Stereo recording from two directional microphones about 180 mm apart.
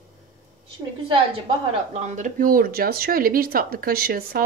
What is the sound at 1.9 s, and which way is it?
Speech, 40° right (ahead or behind).